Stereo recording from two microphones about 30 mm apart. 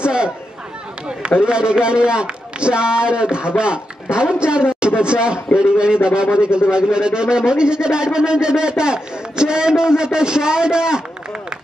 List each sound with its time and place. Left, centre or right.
0.0 s chatter: right
1.0 s a man's voice: right